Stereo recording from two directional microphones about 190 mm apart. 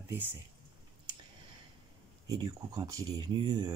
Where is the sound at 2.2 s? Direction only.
20° right (ahead or behind).